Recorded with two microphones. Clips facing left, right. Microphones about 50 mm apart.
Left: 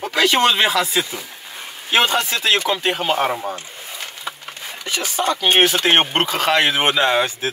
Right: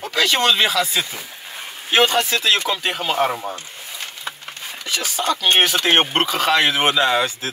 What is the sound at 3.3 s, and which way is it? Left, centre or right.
Speech, centre.